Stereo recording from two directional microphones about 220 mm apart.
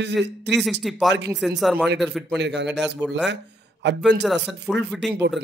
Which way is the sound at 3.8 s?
50° right (ahead or behind).